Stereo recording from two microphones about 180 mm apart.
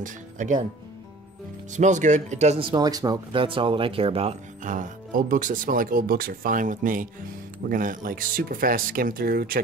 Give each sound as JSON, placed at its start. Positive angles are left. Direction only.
{"t": 0.0, "sound": "speech", "side_deg": -45}
{"t": 1.7, "sound": "speech", "side_deg": -40}